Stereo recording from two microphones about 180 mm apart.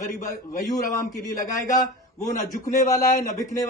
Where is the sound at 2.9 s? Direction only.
20° left (ahead or behind).